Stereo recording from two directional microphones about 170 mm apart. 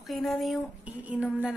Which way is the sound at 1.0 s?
5° right (ahead or behind).